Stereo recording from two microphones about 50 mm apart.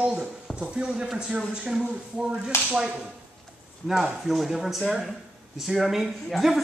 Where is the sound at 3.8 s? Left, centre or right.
Centre.